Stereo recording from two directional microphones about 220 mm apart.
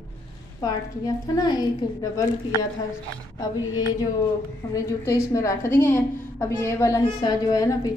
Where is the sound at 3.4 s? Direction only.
15° left (ahead or behind).